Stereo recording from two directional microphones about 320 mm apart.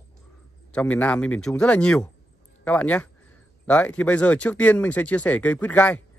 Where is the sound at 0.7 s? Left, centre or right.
Centre.